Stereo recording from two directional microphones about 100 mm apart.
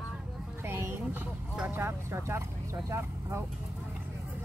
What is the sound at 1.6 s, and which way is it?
Speech, 20° right (ahead or behind).